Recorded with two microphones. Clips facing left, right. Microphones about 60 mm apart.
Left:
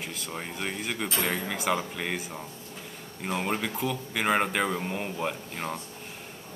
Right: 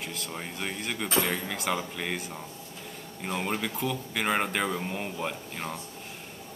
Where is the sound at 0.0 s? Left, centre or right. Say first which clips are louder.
Left 1 dB; centre.